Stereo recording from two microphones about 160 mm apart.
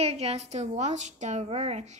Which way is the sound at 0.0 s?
40° right (ahead or behind).